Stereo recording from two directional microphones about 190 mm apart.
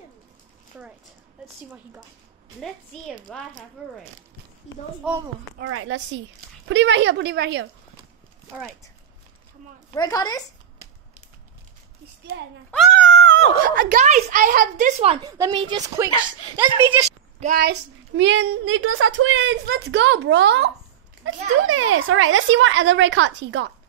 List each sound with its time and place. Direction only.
1.4 s a woman's voice: 10° right (ahead or behind)
2.6 s a child's voice: centre (ahead or behind)
5.6 s a woman's voice: 70° right (ahead or behind)
9.9 s speech: 20° left (ahead or behind)
13.0 s a sound: 70° right (ahead or behind)
13.8 s a woman's voice: 40° right (ahead or behind)
15.2 s a woman's voice: 20° right (ahead or behind)
17.4 s a child's voice: 45° right (ahead or behind)
18.1 s a woman's voice: 75° right (ahead or behind)
21.2 s speech: 90° right; by 23.7 s 70° right (ahead or behind)